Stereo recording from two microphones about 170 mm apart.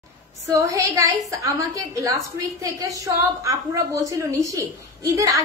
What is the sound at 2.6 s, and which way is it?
A woman's voice, 20° right (ahead or behind).